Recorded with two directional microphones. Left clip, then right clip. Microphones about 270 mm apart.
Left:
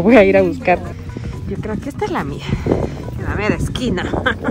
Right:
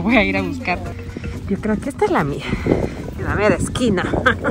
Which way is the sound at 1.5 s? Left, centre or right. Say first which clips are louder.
Right 3 dB; centre.